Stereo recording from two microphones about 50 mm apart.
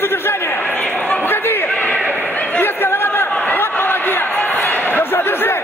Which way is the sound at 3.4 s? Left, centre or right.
Left.